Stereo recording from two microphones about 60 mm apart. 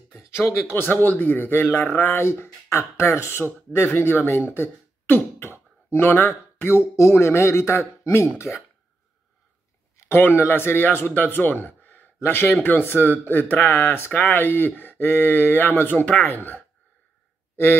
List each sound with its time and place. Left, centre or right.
0.1 s speech: left
9.9 s speech: left
11.3 s a sound: left
12.6 s speech: left